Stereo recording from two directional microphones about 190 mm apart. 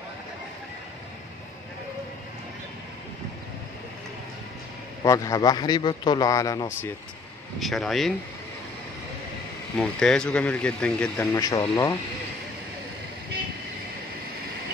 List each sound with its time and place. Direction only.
5.0 s speech: 15° left (ahead or behind)
7.6 s speech: centre (ahead or behind)
9.8 s speech: 5° left (ahead or behind)
11.3 s speech: 20° left (ahead or behind)